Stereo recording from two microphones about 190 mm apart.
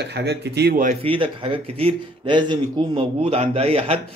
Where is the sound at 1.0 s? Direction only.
25° right (ahead or behind).